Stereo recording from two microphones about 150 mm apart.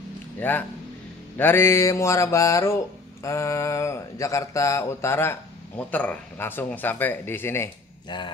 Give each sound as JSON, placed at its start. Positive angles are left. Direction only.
{"t": 0.4, "sound": "speech", "side_deg": 10}
{"t": 1.3, "sound": "a sound", "side_deg": 15}
{"t": 5.9, "sound": "speech", "side_deg": 10}